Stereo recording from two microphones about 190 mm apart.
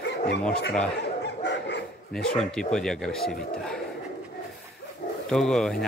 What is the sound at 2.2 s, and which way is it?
Speech, 5° left (ahead or behind).